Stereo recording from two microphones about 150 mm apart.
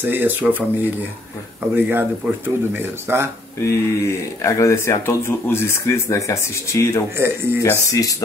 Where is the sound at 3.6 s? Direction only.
20° left (ahead or behind).